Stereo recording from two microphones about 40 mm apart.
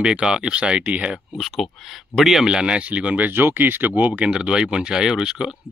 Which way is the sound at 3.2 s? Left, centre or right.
Right.